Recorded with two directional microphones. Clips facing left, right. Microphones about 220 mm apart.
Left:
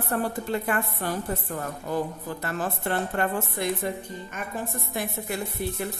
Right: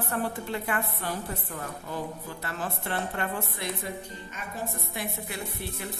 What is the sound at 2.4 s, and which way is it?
A woman's voice, 45° left (ahead or behind).